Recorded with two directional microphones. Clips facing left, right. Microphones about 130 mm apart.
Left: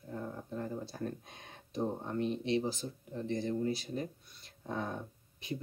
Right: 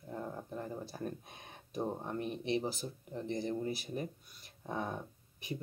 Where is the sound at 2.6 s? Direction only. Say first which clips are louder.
Left 2 dB; 15° right (ahead or behind).